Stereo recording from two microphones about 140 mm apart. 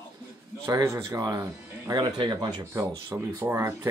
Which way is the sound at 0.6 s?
25° right (ahead or behind).